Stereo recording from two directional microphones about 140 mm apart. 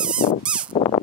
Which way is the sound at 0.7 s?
40° left (ahead or behind).